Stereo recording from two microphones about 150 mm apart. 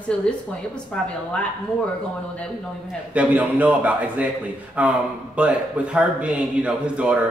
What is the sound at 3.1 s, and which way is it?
Speech, 10° right (ahead or behind).